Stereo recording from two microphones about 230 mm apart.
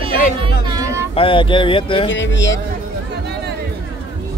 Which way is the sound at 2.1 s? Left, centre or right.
Left.